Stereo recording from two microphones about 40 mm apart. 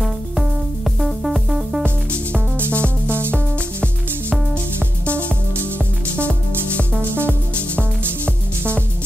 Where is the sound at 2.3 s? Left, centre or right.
Right.